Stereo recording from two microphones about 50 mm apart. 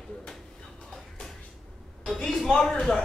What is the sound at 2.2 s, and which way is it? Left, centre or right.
Speech, centre.